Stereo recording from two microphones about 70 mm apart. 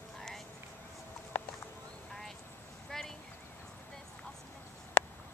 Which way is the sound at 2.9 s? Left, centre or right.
Centre.